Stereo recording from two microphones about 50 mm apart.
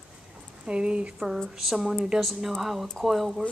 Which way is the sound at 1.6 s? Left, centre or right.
Centre.